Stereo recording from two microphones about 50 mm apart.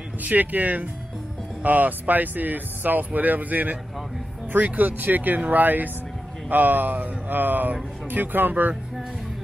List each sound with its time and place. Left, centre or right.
0.2 s speech: right